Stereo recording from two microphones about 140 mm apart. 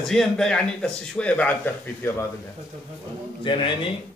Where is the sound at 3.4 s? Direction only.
35° left (ahead or behind).